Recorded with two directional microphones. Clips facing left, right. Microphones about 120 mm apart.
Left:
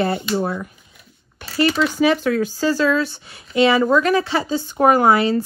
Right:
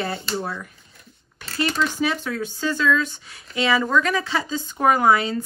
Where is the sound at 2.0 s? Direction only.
60° left (ahead or behind).